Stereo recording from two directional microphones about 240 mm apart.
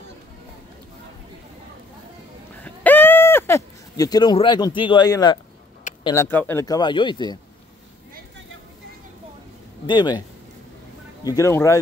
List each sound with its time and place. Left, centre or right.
2.6 s a sound: centre
6.0 s speech: centre
9.8 s speech: centre
11.2 s speech: centre